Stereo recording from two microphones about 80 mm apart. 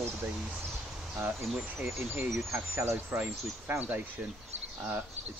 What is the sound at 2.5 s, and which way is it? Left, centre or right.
Speech, right.